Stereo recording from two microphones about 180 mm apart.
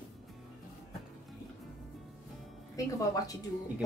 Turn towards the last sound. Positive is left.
turn(degrees=20)  # may be behind; listen again after turning